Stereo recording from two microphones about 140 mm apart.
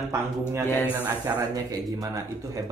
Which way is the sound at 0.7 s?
15° left (ahead or behind).